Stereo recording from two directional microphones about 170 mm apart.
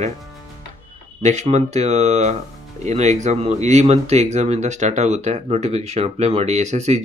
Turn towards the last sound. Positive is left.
turn(degrees=-40)  # may be behind; listen again after turning